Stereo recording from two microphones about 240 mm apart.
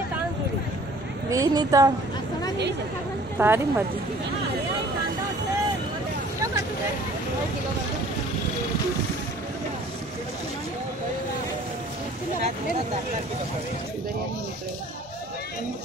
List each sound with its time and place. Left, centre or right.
1.3 s speech: centre
3.3 s speech: centre